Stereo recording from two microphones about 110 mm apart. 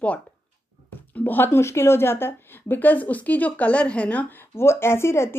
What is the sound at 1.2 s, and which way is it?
A woman's voice, 20° left (ahead or behind).